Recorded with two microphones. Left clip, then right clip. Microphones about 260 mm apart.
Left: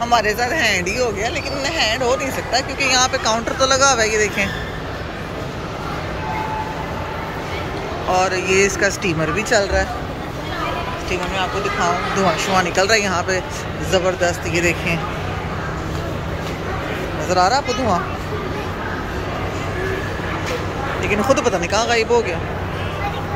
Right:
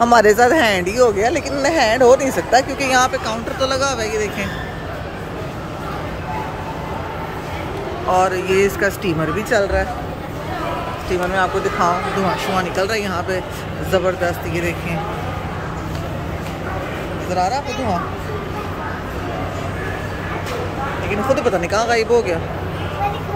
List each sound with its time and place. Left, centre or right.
0.3 s speech: right; by 4.5 s centre
8.1 s speech: centre
11.3 s speech: centre
17.3 s speech: centre
21.1 s speech: centre